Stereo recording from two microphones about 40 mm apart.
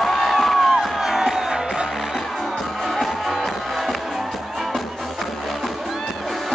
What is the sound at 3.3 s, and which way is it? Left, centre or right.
Music, centre.